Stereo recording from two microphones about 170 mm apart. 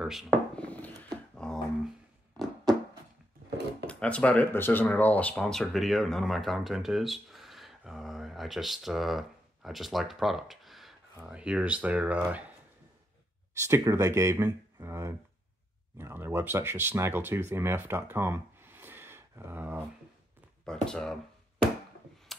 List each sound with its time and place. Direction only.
0.0 s a sound: centre (ahead or behind)
0.7 s mechanisms: 5° left (ahead or behind)
3.8 s speech: 5° left (ahead or behind); by 12.4 s 10° right (ahead or behind)
13.6 s speech: 15° right (ahead or behind)
20.6 s speech: 5° left (ahead or behind)